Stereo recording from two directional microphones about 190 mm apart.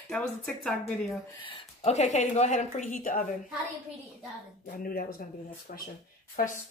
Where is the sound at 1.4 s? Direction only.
30° left (ahead or behind).